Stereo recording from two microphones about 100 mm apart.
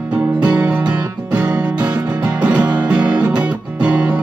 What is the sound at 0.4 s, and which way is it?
Music, 15° right (ahead or behind).